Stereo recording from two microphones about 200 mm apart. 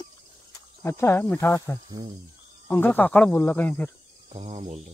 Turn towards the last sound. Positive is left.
turn(degrees=-35)  # may be behind; listen again after turning